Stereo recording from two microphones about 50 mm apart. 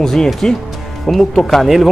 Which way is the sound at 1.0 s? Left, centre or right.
Centre.